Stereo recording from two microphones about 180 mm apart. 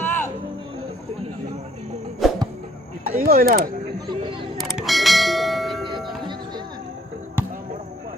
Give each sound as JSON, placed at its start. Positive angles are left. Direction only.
{"t": 0.0, "sound": "music", "side_deg": 10}
{"t": 2.2, "sound": "music", "side_deg": 0}
{"t": 3.1, "sound": "speech", "side_deg": -50}
{"t": 4.7, "sound": "bell", "side_deg": 0}